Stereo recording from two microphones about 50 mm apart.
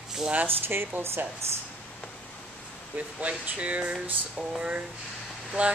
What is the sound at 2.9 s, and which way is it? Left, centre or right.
Speech, right.